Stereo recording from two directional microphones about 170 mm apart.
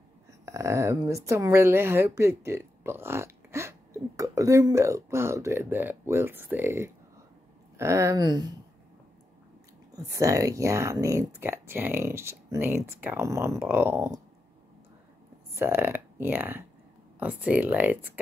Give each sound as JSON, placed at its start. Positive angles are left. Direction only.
{"t": 0.5, "sound": "speech", "side_deg": -15}
{"t": 9.9, "sound": "speech", "side_deg": -20}
{"t": 15.5, "sound": "speech", "side_deg": -15}